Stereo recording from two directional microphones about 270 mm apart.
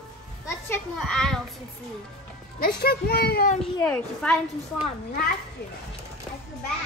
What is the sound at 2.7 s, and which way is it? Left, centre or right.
Speech, left.